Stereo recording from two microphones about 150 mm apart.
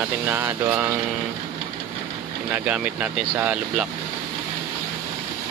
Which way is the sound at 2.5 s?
10° right (ahead or behind).